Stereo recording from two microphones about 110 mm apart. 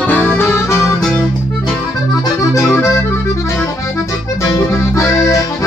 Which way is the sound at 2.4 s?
25° left (ahead or behind).